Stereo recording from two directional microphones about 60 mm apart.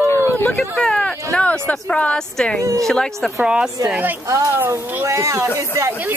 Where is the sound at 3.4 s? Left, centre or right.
Centre.